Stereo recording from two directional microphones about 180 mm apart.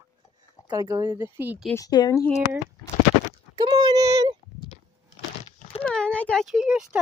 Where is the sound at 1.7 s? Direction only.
20° left (ahead or behind).